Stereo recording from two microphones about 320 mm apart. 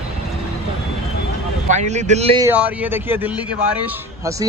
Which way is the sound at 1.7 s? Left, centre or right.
Right.